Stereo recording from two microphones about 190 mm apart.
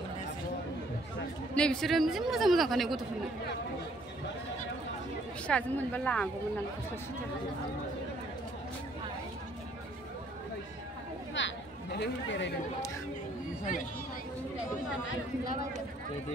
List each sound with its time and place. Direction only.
1.5 s a man's voice: 5° left (ahead or behind)
5.5 s a woman's voice: 5° left (ahead or behind)
11.3 s chatter: 70° left (ahead or behind)